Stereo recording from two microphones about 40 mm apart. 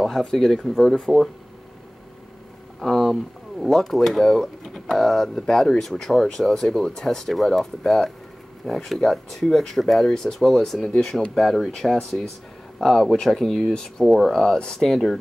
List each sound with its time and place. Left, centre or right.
0.2 s speech: centre
2.8 s speech: centre